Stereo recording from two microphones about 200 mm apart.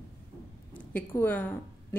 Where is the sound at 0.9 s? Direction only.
10° left (ahead or behind).